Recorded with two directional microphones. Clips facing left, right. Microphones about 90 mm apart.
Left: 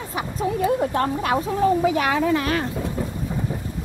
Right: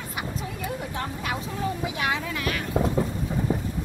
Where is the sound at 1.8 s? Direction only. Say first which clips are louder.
Left 8 dB; 40° left (ahead or behind).